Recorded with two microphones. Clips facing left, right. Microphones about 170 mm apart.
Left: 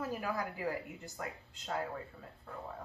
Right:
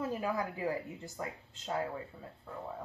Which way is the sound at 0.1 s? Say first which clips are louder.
Right 3 dB; 25° right (ahead or behind).